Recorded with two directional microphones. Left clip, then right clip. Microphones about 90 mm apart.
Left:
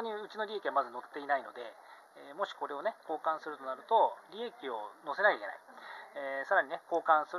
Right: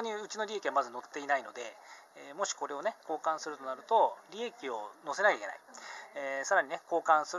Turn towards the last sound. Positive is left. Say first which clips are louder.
# right 1 dB
turn(degrees=-15)  # may be behind; listen again after turning